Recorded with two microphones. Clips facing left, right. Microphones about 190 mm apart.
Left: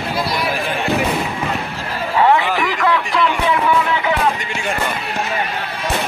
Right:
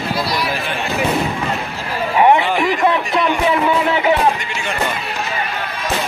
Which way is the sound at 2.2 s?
20° right (ahead or behind).